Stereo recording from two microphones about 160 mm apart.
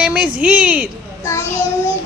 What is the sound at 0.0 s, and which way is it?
Speech, 10° right (ahead or behind).